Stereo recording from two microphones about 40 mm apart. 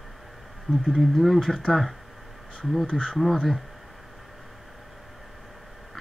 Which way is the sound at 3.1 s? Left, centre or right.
Centre.